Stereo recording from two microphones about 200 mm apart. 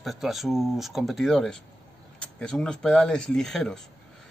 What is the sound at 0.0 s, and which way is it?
Speech, centre (ahead or behind).